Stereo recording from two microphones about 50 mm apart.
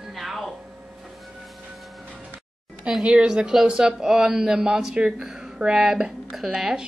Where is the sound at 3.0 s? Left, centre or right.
Centre.